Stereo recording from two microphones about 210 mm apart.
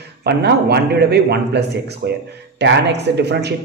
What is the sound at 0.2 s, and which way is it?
Speech, 50° right (ahead or behind).